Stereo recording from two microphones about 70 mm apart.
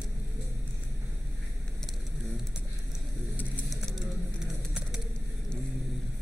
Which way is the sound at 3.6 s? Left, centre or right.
Centre.